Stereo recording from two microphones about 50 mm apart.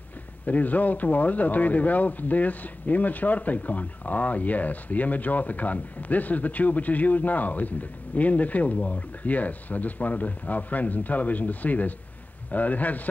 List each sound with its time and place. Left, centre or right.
0.5 s speech: left